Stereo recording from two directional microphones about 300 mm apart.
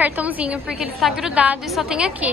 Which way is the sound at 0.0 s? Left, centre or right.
Centre.